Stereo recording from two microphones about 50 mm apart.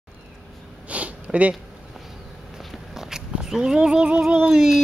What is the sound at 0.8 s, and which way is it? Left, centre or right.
Sniff, right.